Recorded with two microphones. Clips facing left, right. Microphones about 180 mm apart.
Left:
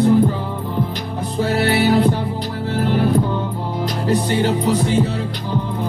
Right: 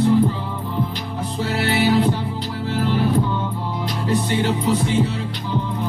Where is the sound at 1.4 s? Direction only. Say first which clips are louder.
Left 3 dB; 45° left (ahead or behind).